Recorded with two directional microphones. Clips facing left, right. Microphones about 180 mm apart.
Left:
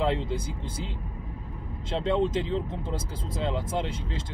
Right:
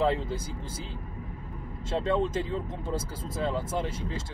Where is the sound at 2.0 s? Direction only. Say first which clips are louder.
Left 2 dB; 20° left (ahead or behind).